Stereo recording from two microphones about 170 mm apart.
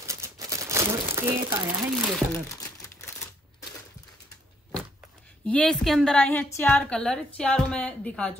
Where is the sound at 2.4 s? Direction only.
20° left (ahead or behind).